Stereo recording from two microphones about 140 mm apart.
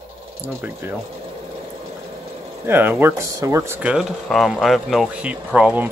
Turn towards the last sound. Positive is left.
turn(degrees=-10)  # may be behind; listen again after turning